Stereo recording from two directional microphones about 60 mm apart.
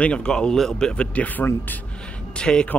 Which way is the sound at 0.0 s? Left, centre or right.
Centre.